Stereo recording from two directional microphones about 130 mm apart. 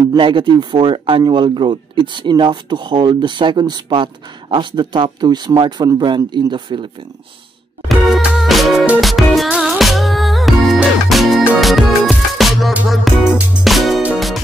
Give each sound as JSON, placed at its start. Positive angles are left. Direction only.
{"t": 0.1, "sound": "speech", "side_deg": -40}
{"t": 8.1, "sound": "music", "side_deg": 0}